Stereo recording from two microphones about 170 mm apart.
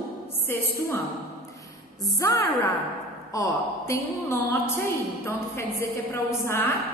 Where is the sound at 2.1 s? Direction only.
15° left (ahead or behind).